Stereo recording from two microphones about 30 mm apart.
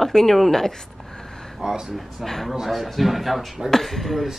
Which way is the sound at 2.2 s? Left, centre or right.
Centre.